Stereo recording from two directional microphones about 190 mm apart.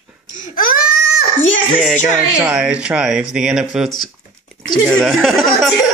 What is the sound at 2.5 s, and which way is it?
Speech, 5° right (ahead or behind).